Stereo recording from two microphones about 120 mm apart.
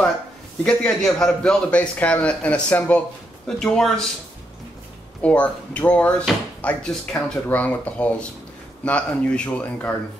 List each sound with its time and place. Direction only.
0.7 s a man's voice: 5° left (ahead or behind)
5.2 s a man's voice: 10° left (ahead or behind)